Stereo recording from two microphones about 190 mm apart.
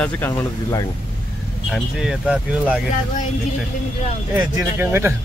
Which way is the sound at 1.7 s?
5° right (ahead or behind).